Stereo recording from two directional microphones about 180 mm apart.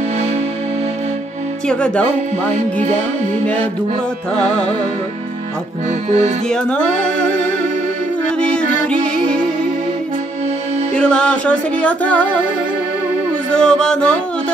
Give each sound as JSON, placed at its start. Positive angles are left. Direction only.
{"t": 1.7, "sound": "music", "side_deg": 5}
{"t": 5.9, "sound": "accordion", "side_deg": -40}
{"t": 6.5, "sound": "music", "side_deg": 5}
{"t": 8.4, "sound": "music", "side_deg": 5}
{"t": 11.0, "sound": "music", "side_deg": 5}
{"t": 13.6, "sound": "music", "side_deg": 5}